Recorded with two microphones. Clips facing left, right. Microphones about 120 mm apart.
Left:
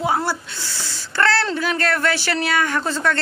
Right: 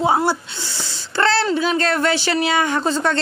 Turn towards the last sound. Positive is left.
turn(degrees=-20)  # may be behind; listen again after turning